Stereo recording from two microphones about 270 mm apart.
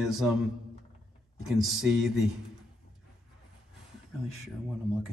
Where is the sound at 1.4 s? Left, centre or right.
Centre.